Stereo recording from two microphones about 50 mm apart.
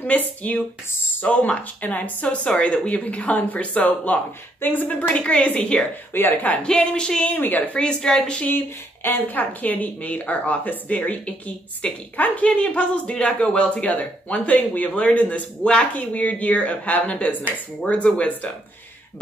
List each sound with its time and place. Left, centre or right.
0.4 s speech: left
4.6 s speech: left
5.1 s speech: left
6.1 s speech: left
6.5 s speech: centre
7.3 s speech: left
7.7 s speech: left
9.0 s speech: left